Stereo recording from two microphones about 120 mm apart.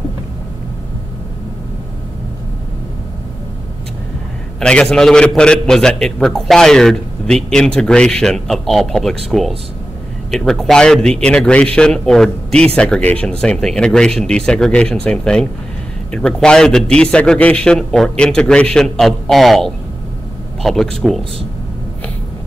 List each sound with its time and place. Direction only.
4.6 s a man's voice: 5° left (ahead or behind)